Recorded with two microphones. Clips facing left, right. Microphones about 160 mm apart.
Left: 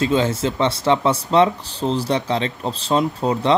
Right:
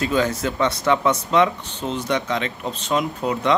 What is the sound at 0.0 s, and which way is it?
Speech, 25° left (ahead or behind).